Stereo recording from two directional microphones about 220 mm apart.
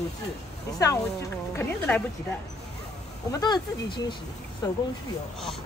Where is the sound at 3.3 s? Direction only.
20° left (ahead or behind).